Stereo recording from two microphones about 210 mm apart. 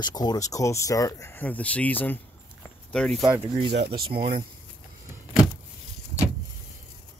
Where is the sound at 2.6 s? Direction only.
5° left (ahead or behind).